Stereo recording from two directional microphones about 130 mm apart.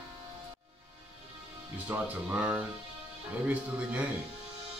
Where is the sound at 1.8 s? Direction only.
15° right (ahead or behind).